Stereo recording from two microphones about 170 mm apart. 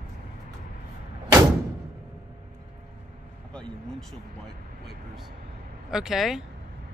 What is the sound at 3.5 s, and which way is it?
Speech, 5° left (ahead or behind).